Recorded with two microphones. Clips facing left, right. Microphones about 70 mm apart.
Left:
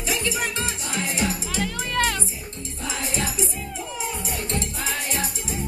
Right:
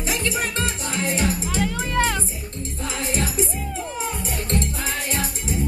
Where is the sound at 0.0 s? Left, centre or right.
Right.